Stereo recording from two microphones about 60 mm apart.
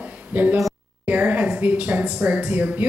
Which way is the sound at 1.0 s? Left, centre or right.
Right.